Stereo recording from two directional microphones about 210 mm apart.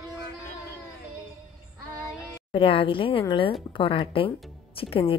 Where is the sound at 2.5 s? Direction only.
25° left (ahead or behind).